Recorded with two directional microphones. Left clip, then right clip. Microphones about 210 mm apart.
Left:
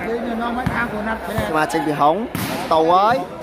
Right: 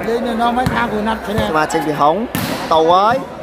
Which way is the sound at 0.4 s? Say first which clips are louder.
Right 6 dB; 45° right (ahead or behind).